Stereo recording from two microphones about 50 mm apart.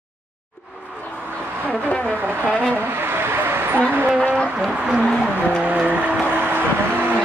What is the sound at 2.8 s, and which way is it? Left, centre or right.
Vehicle, right.